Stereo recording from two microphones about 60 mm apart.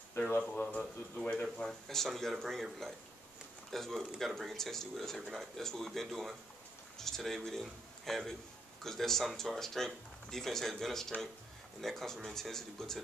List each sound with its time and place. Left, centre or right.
0.6 s speech: left
1.9 s speech: centre